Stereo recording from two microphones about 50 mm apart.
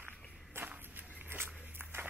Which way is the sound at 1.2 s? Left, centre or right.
Right.